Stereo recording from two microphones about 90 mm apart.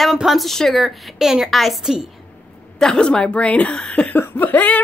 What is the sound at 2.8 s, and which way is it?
A woman's voice, 10° left (ahead or behind).